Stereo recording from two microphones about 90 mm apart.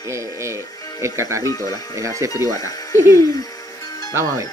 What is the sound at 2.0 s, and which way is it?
Speech, 35° right (ahead or behind).